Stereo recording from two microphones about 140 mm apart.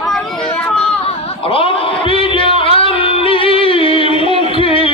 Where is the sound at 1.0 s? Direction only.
40° left (ahead or behind).